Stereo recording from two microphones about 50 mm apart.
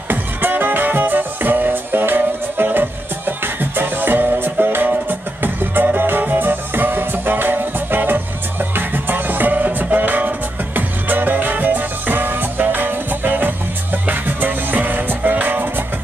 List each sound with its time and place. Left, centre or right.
0.1 s music: right